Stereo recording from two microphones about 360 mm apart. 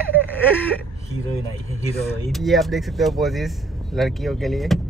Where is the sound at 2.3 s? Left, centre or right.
Centre.